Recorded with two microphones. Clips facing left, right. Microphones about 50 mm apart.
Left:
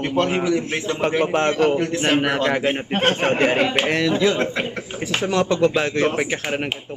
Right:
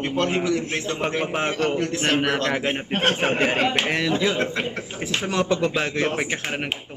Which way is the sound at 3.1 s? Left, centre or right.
Centre.